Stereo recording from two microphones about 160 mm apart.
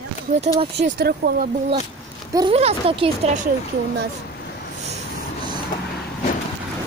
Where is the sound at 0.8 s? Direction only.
80° right.